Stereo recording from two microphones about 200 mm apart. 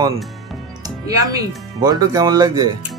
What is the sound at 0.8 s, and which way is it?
Speech, 15° right (ahead or behind).